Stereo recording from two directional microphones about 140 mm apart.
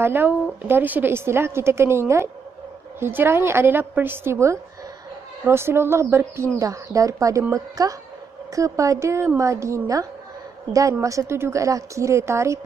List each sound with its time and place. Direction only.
0.0 s a woman's voice: 15° right (ahead or behind)